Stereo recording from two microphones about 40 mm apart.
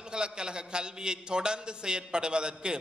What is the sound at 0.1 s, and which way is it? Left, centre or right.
A man's voice, right.